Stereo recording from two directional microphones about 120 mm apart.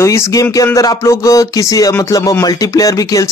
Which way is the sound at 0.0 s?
25° left (ahead or behind).